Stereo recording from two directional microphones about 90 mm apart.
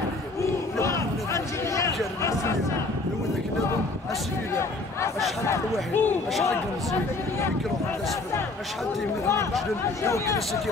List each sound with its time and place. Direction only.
0.4 s crowd: 35° left (ahead or behind)
5.5 s speech: 20° left (ahead or behind)
10.0 s speech: 35° left (ahead or behind)